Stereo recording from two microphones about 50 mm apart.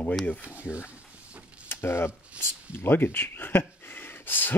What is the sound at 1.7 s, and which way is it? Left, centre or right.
Speech, left.